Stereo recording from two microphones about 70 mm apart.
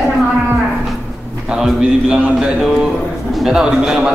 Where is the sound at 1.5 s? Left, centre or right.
Centre.